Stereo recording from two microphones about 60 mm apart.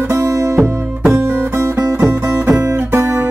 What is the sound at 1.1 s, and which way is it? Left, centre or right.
Music, right.